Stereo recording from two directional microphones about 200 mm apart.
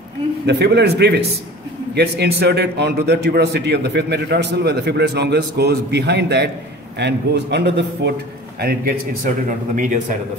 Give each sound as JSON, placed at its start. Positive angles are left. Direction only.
{"t": 0.5, "sound": "a man's voice", "side_deg": -55}